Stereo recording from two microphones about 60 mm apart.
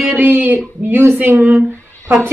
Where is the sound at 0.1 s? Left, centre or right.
Right.